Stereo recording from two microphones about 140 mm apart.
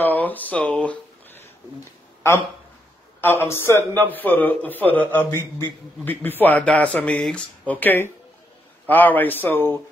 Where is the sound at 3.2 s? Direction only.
15° left (ahead or behind).